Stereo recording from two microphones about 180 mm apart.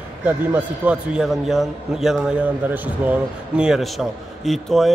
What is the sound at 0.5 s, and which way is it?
A man's voice, 10° right (ahead or behind).